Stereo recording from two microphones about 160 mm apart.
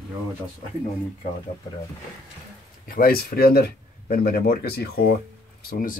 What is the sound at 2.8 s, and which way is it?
Speech, 65° left (ahead or behind).